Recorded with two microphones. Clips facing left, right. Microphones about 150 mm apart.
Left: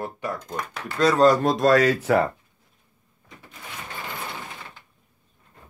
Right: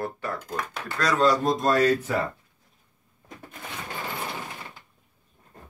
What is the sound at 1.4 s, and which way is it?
Speech, 85° left.